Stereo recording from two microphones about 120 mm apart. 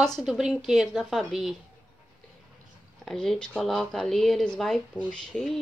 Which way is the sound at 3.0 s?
5° left (ahead or behind).